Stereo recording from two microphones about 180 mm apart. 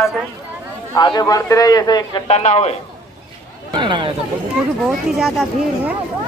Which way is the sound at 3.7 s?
25° right (ahead or behind).